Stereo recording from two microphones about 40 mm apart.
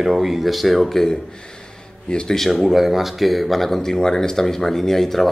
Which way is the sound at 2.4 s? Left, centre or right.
Centre.